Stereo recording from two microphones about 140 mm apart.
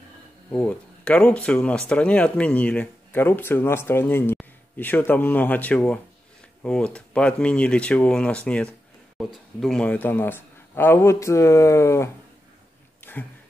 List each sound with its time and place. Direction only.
0.5 s speech: 10° left (ahead or behind)